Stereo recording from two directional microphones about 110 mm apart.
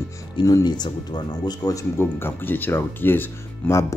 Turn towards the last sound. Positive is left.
turn(degrees=20)  # may be behind; listen again after turning